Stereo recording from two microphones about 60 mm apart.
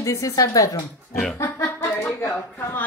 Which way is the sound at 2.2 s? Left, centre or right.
Left.